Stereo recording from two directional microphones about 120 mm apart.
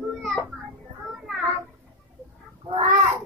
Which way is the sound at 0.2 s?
5° left (ahead or behind).